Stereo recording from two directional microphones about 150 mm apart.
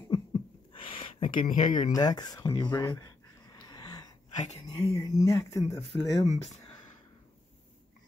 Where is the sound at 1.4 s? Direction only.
60° left (ahead or behind).